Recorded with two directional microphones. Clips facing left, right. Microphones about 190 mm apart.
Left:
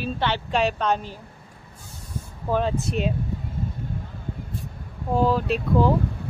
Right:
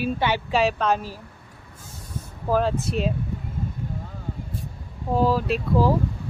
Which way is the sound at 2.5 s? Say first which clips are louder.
Right 1 dB; centre (ahead or behind).